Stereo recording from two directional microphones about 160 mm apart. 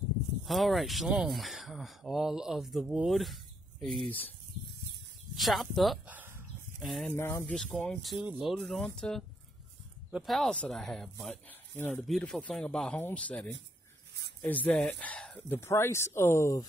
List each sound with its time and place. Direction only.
0.5 s speech: centre (ahead or behind)
5.3 s speech: centre (ahead or behind)
6.0 s a sound: 10° right (ahead or behind)
6.8 s speech: centre (ahead or behind)
7.2 s speech: 15° left (ahead or behind)
7.5 s speech: 5° left (ahead or behind)